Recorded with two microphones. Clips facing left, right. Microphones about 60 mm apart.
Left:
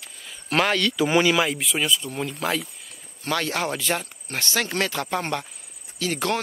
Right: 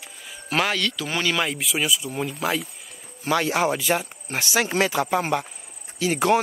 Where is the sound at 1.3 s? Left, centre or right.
Centre.